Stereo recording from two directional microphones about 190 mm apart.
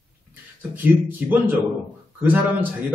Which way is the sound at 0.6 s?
10° right (ahead or behind).